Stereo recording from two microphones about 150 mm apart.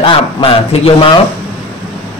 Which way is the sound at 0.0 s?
35° left (ahead or behind).